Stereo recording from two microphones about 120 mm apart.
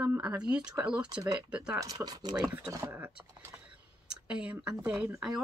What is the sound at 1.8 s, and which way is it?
Speech, 30° right (ahead or behind).